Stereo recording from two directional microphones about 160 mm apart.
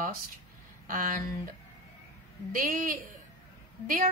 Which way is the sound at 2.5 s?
60° right (ahead or behind).